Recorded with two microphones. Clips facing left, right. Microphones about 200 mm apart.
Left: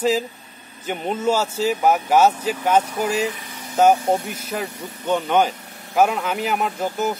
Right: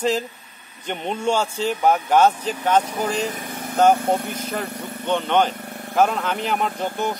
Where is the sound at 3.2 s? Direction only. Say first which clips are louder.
Left 1 dB; 45° right (ahead or behind).